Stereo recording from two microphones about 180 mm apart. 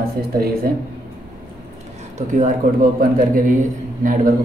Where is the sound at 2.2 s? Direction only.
45° right (ahead or behind).